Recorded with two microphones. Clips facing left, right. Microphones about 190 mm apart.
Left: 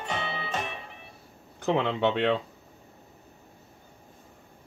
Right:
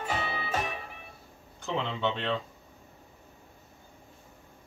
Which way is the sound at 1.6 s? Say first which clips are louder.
Left 6 dB; 65° left (ahead or behind).